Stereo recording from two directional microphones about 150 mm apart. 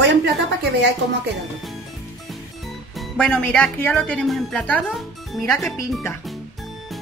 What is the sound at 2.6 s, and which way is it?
Speech, centre (ahead or behind).